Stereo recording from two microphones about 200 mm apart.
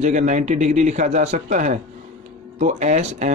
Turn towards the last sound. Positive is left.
turn(degrees=-35)  # may be behind; listen again after turning